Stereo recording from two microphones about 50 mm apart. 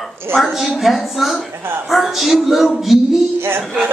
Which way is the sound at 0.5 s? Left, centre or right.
Centre.